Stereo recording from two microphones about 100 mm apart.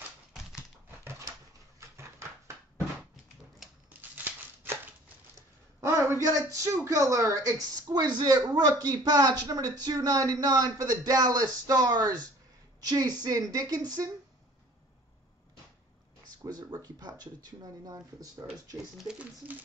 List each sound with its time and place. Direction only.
1.8 s a sound: 30° right (ahead or behind)
4.1 s a sound: 20° right (ahead or behind)
5.8 s speech: 30° right (ahead or behind)
7.9 s speech: 45° right (ahead or behind)
16.4 s speech: 40° right (ahead or behind)
18.9 s speech: 10° right (ahead or behind)